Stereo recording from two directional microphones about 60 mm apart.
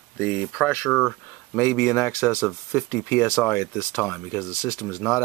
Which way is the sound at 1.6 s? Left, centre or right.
Left.